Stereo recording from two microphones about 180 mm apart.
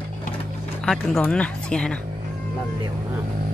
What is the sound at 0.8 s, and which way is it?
Speech, 5° left (ahead or behind).